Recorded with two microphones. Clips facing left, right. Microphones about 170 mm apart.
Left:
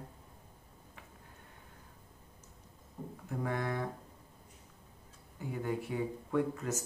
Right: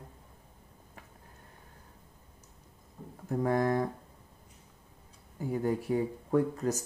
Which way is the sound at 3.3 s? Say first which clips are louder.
Right 8 dB; 40° right (ahead or behind).